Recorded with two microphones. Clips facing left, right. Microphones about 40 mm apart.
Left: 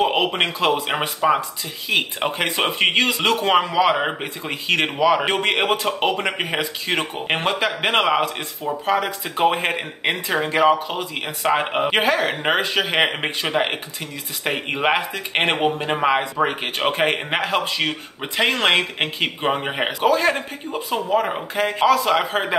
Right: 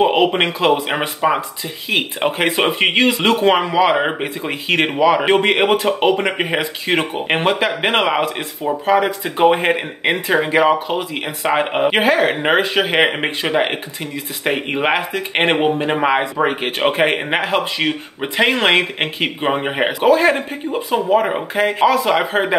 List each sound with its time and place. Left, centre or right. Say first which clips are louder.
0.0 s speech: right 5 dB; centre